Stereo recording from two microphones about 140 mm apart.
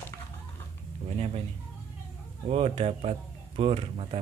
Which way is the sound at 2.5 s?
45° right (ahead or behind).